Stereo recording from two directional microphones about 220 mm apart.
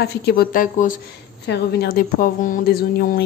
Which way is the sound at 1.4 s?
50° left (ahead or behind).